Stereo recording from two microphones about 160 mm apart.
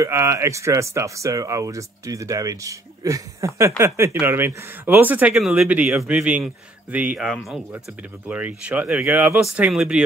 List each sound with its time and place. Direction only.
0.0 s speech: 15° right (ahead or behind)